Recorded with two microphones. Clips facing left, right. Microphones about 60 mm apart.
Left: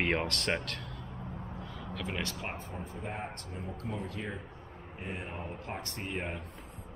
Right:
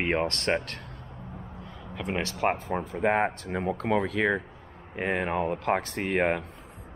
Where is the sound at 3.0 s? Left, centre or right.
Right.